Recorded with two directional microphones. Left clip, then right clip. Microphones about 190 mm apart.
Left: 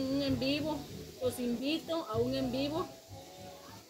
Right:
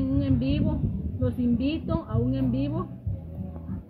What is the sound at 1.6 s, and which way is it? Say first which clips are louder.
A woman's voice: right 5 dB; 15° left (ahead or behind).